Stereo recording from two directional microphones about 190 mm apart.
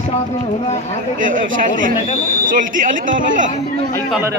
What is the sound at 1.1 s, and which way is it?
Speech, 45° right (ahead or behind).